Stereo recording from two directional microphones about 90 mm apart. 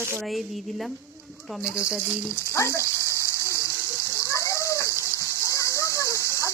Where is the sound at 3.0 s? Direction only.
35° right (ahead or behind).